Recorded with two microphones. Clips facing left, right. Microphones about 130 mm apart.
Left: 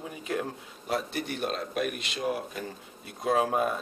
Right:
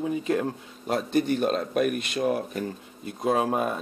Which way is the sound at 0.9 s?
45° right (ahead or behind).